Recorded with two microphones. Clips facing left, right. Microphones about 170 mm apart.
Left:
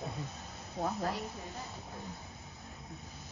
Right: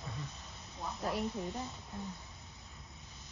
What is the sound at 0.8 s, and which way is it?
Speech, 60° left (ahead or behind).